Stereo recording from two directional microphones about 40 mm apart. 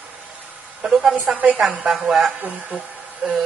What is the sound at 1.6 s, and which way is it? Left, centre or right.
Speech, centre.